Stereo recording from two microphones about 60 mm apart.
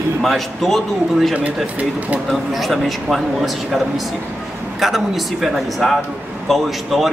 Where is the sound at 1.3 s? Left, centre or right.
Right.